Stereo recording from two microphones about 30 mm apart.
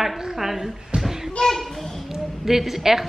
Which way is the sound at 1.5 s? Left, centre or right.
Centre.